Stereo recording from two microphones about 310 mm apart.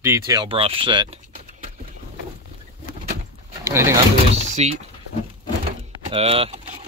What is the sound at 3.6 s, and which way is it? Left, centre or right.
Speech, centre.